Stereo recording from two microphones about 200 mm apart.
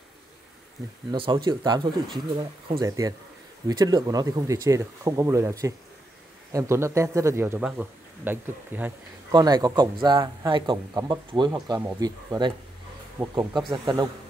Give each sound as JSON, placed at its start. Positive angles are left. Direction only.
{"t": 1.1, "sound": "a man's voice", "side_deg": -25}
{"t": 9.3, "sound": "a man's voice", "side_deg": -20}